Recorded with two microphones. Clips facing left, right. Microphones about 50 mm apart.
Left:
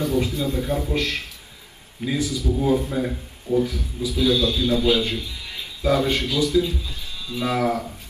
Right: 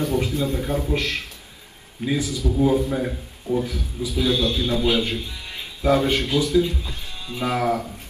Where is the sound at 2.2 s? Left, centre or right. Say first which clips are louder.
Left 1 dB; right.